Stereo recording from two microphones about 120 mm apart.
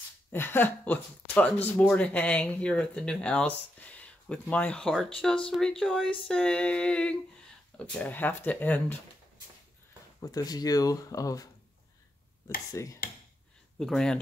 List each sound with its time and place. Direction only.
0.3 s speech: 20° left (ahead or behind)
10.2 s speech: 30° left (ahead or behind)
12.7 s a sound: 25° left (ahead or behind)
13.7 s speech: 5° left (ahead or behind)